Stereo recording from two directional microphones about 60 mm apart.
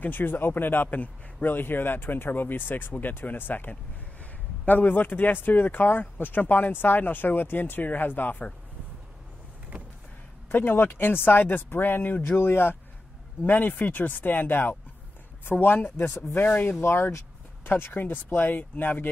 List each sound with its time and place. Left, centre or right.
0.0 s speech: left
10.5 s speech: left
16.8 s speech: left